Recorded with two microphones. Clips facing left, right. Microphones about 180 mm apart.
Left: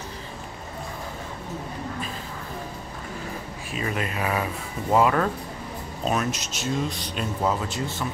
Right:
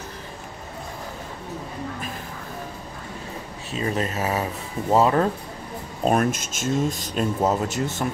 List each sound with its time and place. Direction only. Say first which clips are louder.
3.7 s speech: right 3 dB; 35° right (ahead or behind)
6.0 s speech: right 5 dB; 50° right (ahead or behind)